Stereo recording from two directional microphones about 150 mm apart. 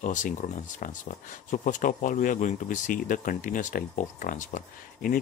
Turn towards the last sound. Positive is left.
turn(degrees=60)  # may be behind; listen again after turning